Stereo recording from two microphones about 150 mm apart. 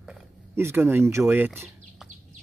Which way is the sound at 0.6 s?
15° right (ahead or behind).